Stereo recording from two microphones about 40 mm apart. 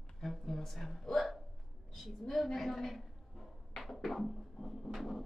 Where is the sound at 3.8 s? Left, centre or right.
Centre.